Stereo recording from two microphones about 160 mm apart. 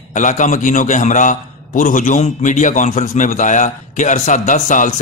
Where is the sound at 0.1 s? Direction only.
50° left (ahead or behind).